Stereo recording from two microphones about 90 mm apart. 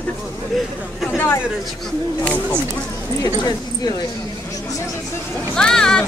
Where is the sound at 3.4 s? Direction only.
45° left (ahead or behind).